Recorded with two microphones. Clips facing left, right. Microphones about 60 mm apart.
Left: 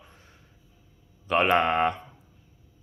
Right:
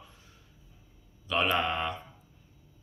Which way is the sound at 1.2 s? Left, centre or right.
Left.